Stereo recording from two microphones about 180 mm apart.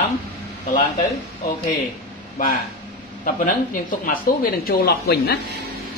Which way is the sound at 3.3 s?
50° left (ahead or behind).